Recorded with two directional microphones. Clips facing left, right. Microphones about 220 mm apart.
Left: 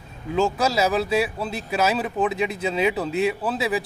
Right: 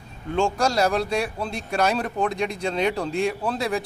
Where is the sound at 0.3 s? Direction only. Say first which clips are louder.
Left 1 dB; 5° left (ahead or behind).